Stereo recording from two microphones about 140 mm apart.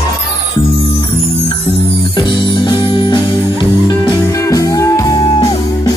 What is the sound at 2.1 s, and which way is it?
Music, 35° left (ahead or behind).